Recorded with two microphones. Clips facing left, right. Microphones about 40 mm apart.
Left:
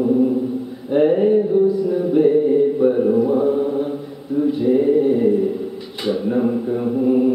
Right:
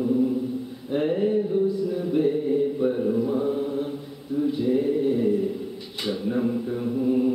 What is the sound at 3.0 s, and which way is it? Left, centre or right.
Chant, left.